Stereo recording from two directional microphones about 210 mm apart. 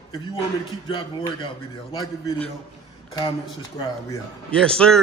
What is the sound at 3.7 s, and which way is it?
Speech, 20° left (ahead or behind).